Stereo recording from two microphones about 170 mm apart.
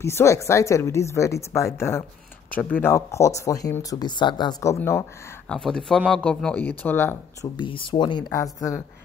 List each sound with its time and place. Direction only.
0.0 s speech: 15° left (ahead or behind)
5.5 s speech: 5° left (ahead or behind)
7.5 s speech: 30° left (ahead or behind)